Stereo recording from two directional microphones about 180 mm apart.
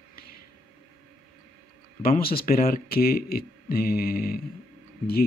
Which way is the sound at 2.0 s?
55° left (ahead or behind).